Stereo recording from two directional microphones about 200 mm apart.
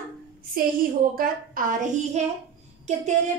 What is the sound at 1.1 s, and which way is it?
A woman's voice, 45° right (ahead or behind).